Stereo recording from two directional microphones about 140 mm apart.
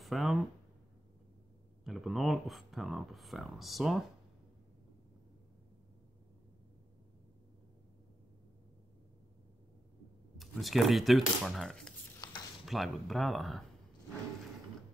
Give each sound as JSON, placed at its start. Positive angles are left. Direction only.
{"t": 0.0, "sound": "speech", "side_deg": 0}
{"t": 1.9, "sound": "speech", "side_deg": 0}
{"t": 10.3, "sound": "speech", "side_deg": 0}
{"t": 12.2, "sound": "a sound", "side_deg": 30}
{"t": 12.6, "sound": "speech", "side_deg": 0}